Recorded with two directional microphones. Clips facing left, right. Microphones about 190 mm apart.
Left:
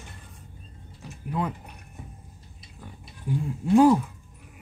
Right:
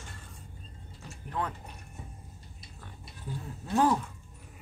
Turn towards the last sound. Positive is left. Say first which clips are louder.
# left 9 dB
turn(degrees=10)  # may be behind; listen again after turning